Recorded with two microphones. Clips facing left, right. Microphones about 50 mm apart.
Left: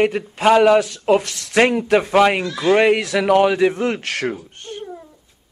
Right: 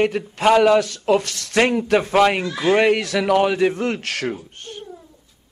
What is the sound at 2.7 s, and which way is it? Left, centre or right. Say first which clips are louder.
A man's voice: left 2 dB; left.